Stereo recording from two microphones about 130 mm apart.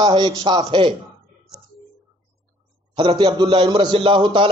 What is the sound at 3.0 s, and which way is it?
A man's voice, 40° right (ahead or behind).